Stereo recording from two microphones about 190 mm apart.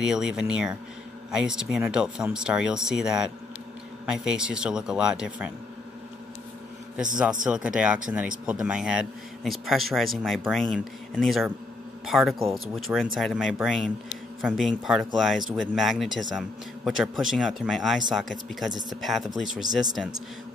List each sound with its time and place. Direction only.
0.0 s speech: 5° right (ahead or behind)
7.4 s speech: 5° right (ahead or behind)
18.7 s speech: 20° right (ahead or behind)
18.9 s speech: centre (ahead or behind)